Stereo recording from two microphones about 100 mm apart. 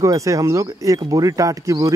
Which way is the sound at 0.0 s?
30° right (ahead or behind).